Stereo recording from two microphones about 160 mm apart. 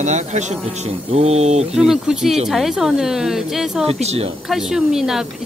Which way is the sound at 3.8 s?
40° right (ahead or behind).